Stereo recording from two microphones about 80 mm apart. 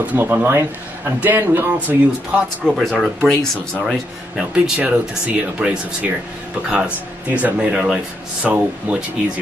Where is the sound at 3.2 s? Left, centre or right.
Centre.